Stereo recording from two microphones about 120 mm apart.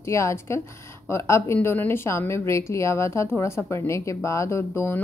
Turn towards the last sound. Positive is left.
turn(degrees=20)  # may be behind; listen again after turning